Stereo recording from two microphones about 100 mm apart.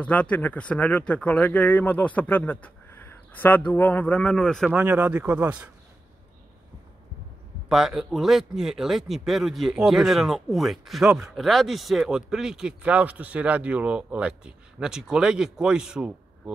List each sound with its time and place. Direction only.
0.0 s speech: 15° left (ahead or behind)
4.7 s speech: 15° right (ahead or behind)
7.6 s speech: 5° right (ahead or behind)